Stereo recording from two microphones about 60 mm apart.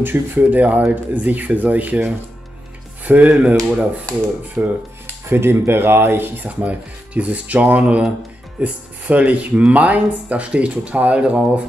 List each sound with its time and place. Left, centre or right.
0.0 s speech: right
3.1 s speech: right
4.6 s speech: right; by 11.6 s centre